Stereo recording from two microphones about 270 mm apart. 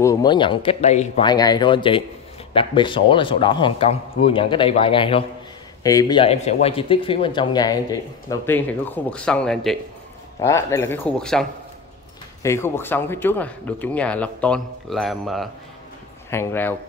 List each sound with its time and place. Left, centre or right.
0.0 s a man's voice: centre
12.4 s speech: centre